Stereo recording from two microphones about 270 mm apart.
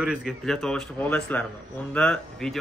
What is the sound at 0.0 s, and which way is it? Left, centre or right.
Speech, centre.